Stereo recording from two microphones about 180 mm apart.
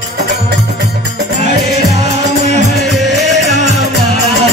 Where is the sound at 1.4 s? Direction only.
40° right (ahead or behind).